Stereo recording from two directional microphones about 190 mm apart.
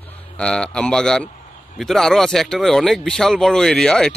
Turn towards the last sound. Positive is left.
turn(degrees=5)  # may be behind; listen again after turning